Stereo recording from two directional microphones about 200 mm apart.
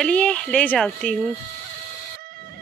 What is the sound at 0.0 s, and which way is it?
Speech, 5° left (ahead or behind).